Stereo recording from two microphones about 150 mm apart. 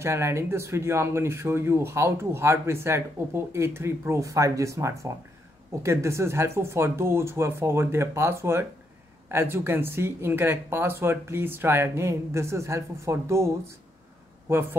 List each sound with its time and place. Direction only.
0.0 s speech: 20° right (ahead or behind)